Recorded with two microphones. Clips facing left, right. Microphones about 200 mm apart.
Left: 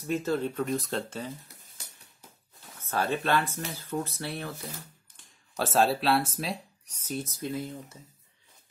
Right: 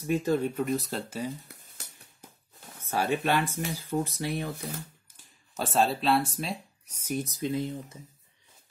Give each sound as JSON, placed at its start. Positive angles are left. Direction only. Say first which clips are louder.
{"t": 0.0, "sound": "speech", "louder": "right 2 dB", "side_deg": -15}
{"t": 2.8, "sound": "speech", "louder": "right 1 dB", "side_deg": -15}
{"t": 5.1, "sound": "speech", "louder": "left 2 dB", "side_deg": 0}
{"t": 7.1, "sound": "speech", "louder": "right 3 dB", "side_deg": -15}